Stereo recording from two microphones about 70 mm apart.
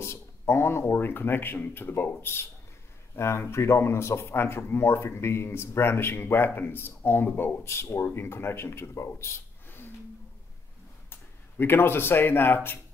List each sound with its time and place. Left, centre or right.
0.0 s speech: left
11.1 s speech: left